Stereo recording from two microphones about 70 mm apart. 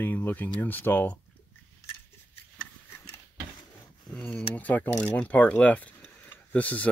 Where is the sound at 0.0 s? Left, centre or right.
Left.